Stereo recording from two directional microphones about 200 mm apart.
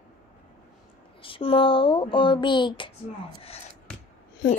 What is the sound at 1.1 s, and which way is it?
Speech, 25° left (ahead or behind).